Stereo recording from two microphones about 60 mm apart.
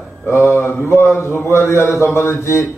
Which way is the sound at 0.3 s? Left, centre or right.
Left.